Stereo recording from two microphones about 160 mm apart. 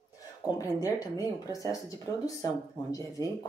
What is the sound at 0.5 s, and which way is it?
Speech, 20° left (ahead or behind).